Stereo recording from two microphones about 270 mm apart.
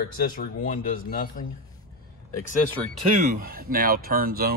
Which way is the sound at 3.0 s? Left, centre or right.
Right.